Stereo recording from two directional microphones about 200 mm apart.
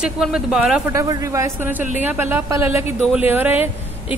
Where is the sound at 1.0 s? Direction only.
15° right (ahead or behind).